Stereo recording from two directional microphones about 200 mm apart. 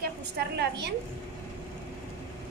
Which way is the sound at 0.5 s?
55° right (ahead or behind).